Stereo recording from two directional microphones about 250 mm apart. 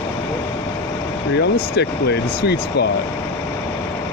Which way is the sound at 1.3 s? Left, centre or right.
Left.